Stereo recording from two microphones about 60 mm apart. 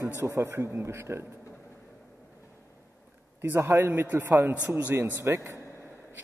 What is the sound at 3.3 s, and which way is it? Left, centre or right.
Speech, right.